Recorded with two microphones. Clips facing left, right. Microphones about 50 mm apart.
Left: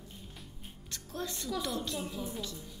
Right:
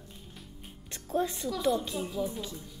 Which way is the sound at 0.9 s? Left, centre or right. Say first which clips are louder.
Right 9 dB; right.